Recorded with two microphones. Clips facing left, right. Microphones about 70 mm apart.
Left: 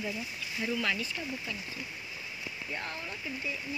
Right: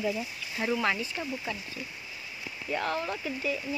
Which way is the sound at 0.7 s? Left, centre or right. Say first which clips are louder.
Right 4 dB; right.